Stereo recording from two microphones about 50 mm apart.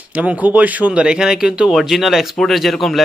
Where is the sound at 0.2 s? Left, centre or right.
Right.